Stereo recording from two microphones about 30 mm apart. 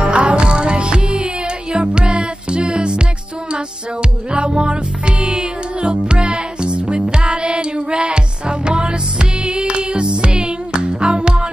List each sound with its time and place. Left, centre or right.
0.0 s music: right
4.3 s music: right